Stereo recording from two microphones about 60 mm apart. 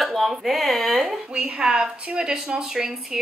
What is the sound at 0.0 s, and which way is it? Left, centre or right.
Speech, centre.